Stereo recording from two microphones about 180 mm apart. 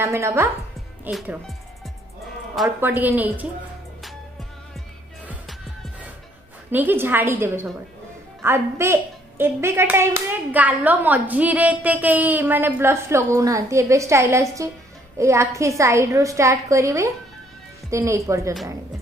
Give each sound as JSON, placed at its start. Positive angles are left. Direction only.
{"t": 0.0, "sound": "a woman's voice", "side_deg": -15}
{"t": 2.8, "sound": "a woman's voice", "side_deg": -10}
{"t": 5.2, "sound": "music", "side_deg": -10}
{"t": 6.7, "sound": "a woman's voice", "side_deg": -10}